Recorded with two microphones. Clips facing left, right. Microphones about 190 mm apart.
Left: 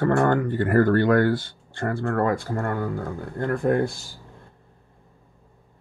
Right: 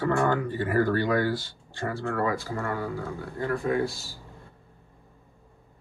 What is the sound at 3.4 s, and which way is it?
Speech, 55° left (ahead or behind).